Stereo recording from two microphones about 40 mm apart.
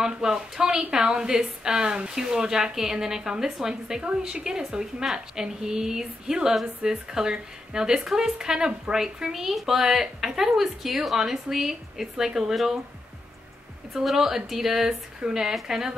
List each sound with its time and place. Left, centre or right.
0.0 s a woman's voice: centre
13.9 s a woman's voice: centre